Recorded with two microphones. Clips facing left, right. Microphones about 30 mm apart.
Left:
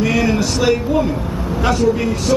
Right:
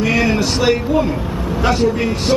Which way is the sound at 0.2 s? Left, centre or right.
Centre.